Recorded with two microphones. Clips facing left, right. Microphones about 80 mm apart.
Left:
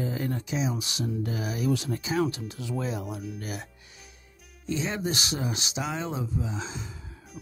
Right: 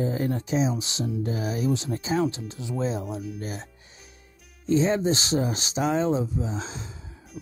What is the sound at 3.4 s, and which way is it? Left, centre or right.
Music, right.